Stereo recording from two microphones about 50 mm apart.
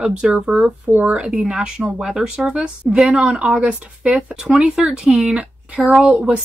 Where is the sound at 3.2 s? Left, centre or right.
Right.